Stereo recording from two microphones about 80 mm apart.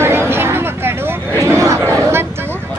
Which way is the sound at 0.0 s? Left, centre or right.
Right.